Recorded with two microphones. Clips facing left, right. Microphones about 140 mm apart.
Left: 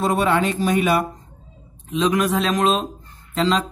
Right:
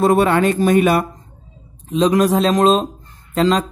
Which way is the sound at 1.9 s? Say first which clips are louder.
Right 5 dB; 35° right (ahead or behind).